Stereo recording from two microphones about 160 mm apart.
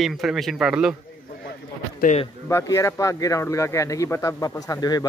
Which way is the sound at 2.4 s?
15° left (ahead or behind).